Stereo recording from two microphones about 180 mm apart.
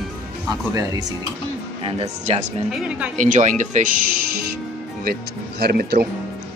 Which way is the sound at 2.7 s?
5° right (ahead or behind).